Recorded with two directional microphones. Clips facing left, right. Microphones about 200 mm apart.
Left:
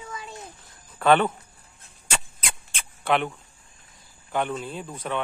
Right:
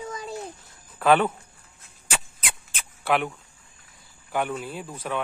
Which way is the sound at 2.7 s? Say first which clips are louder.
Even; 5° right (ahead or behind).